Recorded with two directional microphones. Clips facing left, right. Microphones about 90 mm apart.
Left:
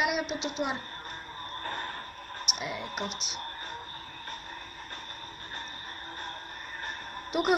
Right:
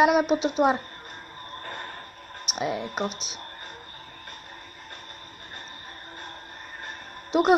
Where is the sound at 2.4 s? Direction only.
35° right (ahead or behind).